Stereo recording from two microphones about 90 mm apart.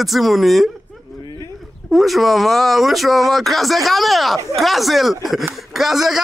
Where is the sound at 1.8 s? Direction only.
Centre (ahead or behind).